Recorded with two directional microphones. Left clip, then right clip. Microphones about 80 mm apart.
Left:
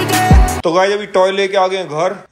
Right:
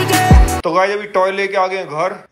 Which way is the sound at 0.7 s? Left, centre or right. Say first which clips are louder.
Left 2 dB; left.